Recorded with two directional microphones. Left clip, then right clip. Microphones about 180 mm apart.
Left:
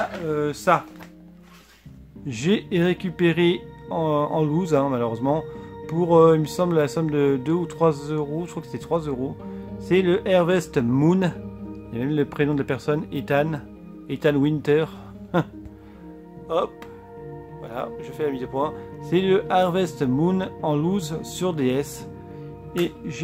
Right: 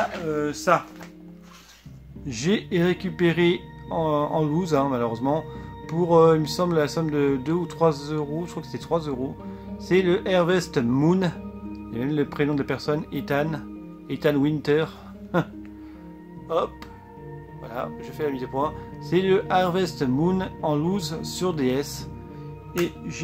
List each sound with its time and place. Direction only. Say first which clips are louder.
0.3 s speech: left 2 dB; 40° left (ahead or behind)
2.2 s speech: left 2 dB; 25° left (ahead or behind)